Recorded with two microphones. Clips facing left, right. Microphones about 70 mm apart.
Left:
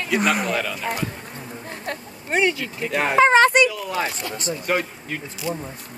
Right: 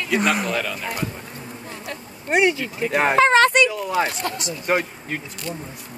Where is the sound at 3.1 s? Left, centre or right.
Centre.